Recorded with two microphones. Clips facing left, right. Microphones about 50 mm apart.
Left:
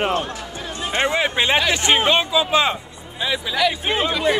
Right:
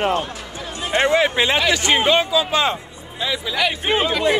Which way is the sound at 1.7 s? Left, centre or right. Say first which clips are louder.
Right 1 dB; left.